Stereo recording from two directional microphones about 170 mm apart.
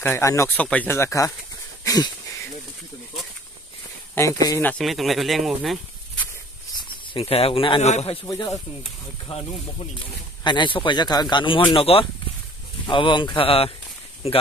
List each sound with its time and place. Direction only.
0.0 s speech: 15° left (ahead or behind)
1.9 s a sound: 20° left (ahead or behind)
4.4 s speech: 15° left (ahead or behind)
4.8 s speech: centre (ahead or behind)
6.8 s speech: 35° left (ahead or behind)
8.3 s speech: 20° left (ahead or behind)
9.3 s speech: 35° left (ahead or behind)